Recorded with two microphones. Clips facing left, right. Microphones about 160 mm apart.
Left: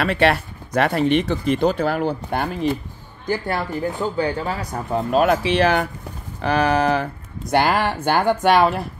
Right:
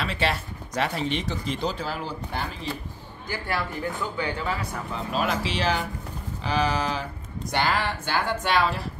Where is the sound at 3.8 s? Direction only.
35° left (ahead or behind).